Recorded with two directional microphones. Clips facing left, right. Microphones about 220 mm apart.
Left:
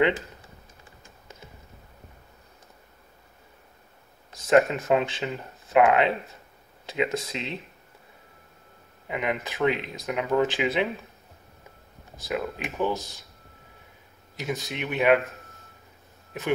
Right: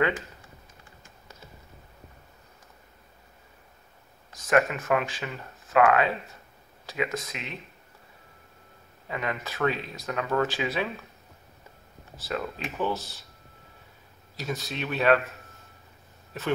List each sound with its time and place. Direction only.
4.5 s speech: 25° left (ahead or behind)
9.0 s speech: 20° left (ahead or behind)
12.3 s speech: 15° left (ahead or behind)
14.3 s speech: 20° left (ahead or behind)